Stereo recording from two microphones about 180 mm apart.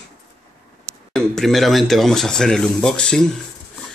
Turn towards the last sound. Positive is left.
turn(degrees=5)  # may be behind; listen again after turning